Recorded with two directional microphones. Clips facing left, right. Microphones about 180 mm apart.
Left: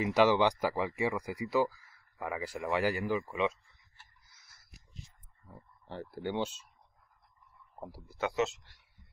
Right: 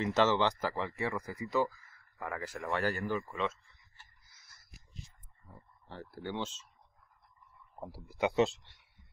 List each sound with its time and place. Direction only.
0.0 s speech: 10° left (ahead or behind)
5.9 s speech: 15° left (ahead or behind)
8.3 s speech: 30° right (ahead or behind)